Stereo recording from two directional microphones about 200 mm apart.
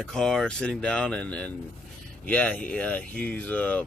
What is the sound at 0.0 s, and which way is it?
Speech, 5° left (ahead or behind).